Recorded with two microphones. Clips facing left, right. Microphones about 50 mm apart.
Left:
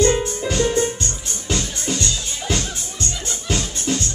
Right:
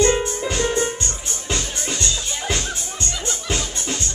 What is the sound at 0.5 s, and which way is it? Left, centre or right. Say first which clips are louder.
Music: left 3 dB; centre.